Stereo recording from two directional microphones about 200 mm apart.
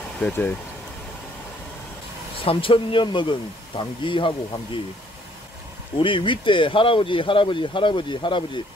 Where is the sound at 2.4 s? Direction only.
25° left (ahead or behind).